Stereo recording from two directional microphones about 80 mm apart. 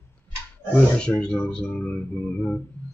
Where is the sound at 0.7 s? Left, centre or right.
Centre.